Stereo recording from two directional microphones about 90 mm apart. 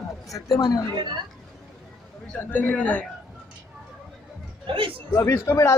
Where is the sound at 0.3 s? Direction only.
40° left (ahead or behind).